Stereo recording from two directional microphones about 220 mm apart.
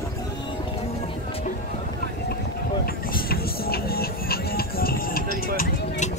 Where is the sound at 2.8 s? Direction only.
40° left (ahead or behind).